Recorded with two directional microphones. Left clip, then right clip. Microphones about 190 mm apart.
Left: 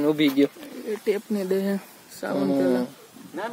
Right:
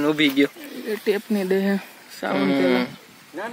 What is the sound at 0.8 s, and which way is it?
Speech, 45° right (ahead or behind).